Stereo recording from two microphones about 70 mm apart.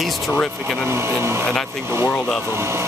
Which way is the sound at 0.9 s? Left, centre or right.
Right.